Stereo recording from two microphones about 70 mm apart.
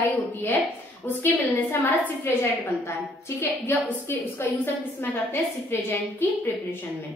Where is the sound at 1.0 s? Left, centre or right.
Left.